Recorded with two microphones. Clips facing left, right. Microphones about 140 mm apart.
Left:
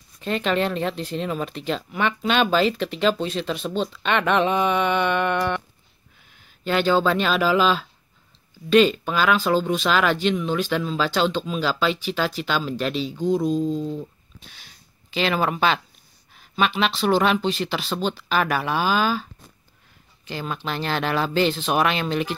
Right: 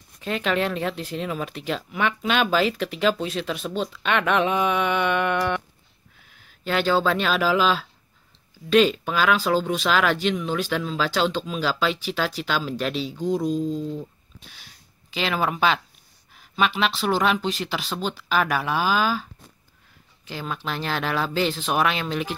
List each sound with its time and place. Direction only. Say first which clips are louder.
0.2 s speech: left 2 dB; 5° right (ahead or behind)
6.6 s speech: left 2 dB; centre (ahead or behind)
20.2 s speech: left 2 dB; centre (ahead or behind)